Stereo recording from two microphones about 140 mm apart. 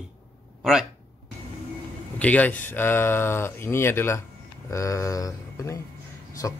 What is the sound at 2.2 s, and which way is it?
A man's voice, 10° left (ahead or behind).